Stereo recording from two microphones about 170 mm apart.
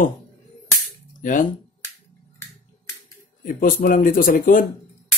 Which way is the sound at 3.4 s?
55° left (ahead or behind).